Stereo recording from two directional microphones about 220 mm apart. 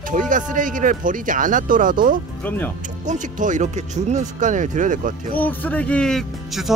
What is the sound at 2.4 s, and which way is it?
Speech, 10° left (ahead or behind).